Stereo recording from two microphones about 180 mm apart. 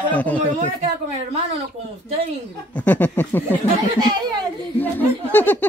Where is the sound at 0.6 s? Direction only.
35° right (ahead or behind).